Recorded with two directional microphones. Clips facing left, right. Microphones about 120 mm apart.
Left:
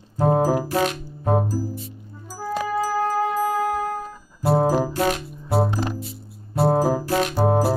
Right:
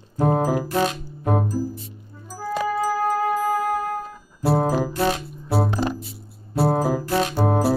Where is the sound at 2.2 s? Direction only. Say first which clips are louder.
Right 1 dB; 5° left (ahead or behind).